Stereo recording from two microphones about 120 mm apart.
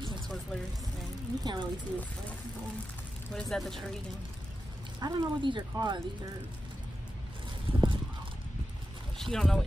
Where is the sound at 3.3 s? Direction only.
5° left (ahead or behind).